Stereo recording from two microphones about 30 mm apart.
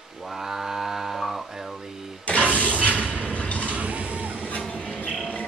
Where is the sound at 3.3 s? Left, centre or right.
Left.